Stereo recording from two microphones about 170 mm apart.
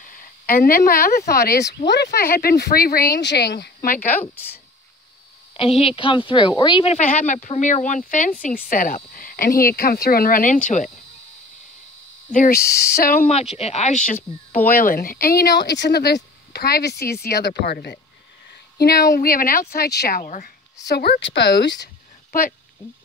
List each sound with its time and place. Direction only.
0.0 s speech: 55° left (ahead or behind)
5.5 s speech: 35° left (ahead or behind)
12.3 s speech: 55° left (ahead or behind)
13.3 s speech: 40° left (ahead or behind)
14.8 s speech: 55° left (ahead or behind); by 17.9 s 75° left (ahead or behind)
18.8 s speech: 65° left (ahead or behind)
19.7 s speech: 70° left (ahead or behind); by 20.5 s 50° left (ahead or behind)
20.8 s speech: 70° left (ahead or behind)